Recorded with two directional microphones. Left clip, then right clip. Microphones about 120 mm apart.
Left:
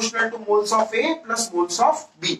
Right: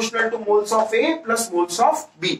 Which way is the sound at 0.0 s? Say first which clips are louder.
Right 2 dB; 15° right (ahead or behind).